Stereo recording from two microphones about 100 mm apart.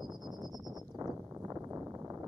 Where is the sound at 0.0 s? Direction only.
45° right (ahead or behind).